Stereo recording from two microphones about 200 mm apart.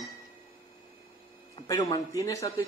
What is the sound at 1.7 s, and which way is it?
Speech, 20° left (ahead or behind).